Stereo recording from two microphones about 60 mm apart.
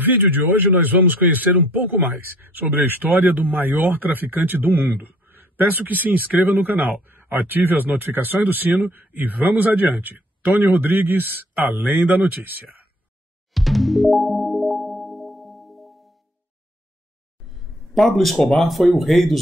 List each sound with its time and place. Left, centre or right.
0.0 s speech: right
13.5 s music: centre
17.5 s a sound: centre
18.6 s speech: centre